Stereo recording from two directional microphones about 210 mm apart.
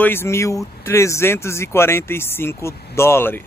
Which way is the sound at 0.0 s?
10° left (ahead or behind).